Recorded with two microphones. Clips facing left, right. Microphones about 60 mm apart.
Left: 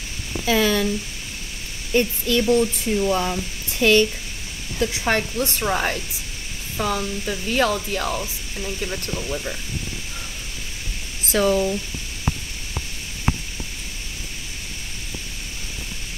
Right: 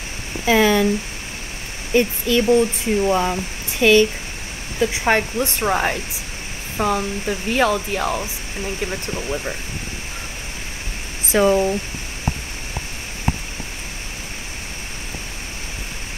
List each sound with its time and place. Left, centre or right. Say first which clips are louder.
0.5 s speech: right 4 dB; right
2.0 s speech: right 3 dB; right
11.2 s speech: right 3 dB; right